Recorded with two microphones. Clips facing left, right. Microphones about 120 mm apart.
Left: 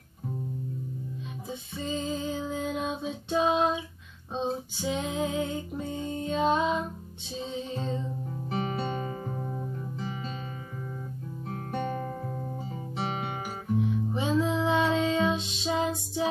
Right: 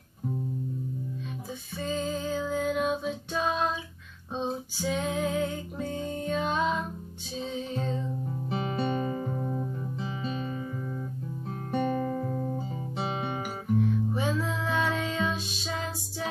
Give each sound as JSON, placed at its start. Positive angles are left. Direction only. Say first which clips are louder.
{"t": 1.9, "sound": "music", "louder": "right 1 dB", "side_deg": 20}
{"t": 4.7, "sound": "music", "louder": "right 3 dB", "side_deg": 20}
{"t": 11.7, "sound": "guitar", "louder": "right 4 dB", "side_deg": -15}
{"t": 13.7, "sound": "music", "louder": "right 1 dB", "side_deg": 20}